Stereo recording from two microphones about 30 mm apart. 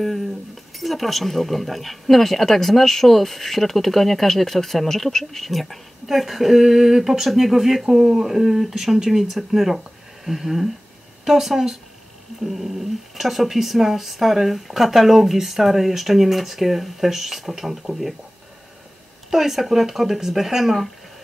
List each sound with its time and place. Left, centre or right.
0.7 s speech: centre
7.8 s speech: right
8.3 s speech: centre
19.3 s speech: centre